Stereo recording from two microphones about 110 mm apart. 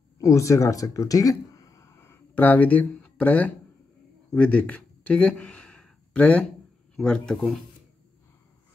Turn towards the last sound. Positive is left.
turn(degrees=5)  # may be behind; listen again after turning